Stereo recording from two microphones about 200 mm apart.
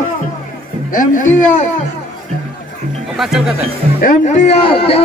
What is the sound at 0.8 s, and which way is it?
Speech, 40° left (ahead or behind).